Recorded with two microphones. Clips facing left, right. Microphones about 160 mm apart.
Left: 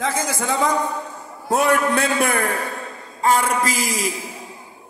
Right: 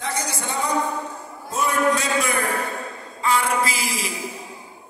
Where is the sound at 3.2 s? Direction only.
45° left (ahead or behind).